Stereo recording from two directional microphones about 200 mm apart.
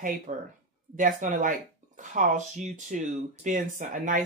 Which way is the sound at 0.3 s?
40° right (ahead or behind).